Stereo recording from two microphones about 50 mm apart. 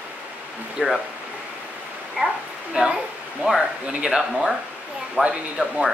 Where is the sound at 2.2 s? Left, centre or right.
Centre.